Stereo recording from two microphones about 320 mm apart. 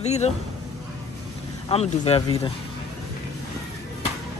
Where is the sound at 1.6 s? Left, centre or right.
Centre.